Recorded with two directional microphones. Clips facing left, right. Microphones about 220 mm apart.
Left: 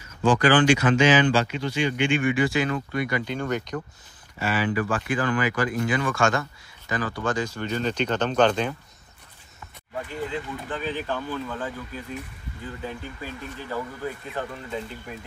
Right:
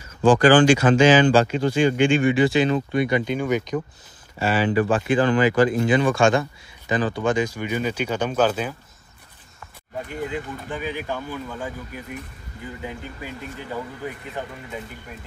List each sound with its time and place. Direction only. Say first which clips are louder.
0.4 s speech: right 3 dB; 40° right (ahead or behind)
1.3 s speech: right 6 dB; 45° right (ahead or behind)
2.0 s speech: right 4 dB; 30° right (ahead or behind)
3.3 s speech: right 5 dB; 10° right (ahead or behind)
4.4 s speech: right 5 dB; 30° right (ahead or behind); by 8.7 s 5° right (ahead or behind)
10.3 s speech: right 1 dB; 10° right (ahead or behind)